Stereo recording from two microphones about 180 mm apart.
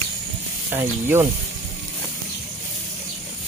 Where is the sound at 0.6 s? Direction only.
15° right (ahead or behind).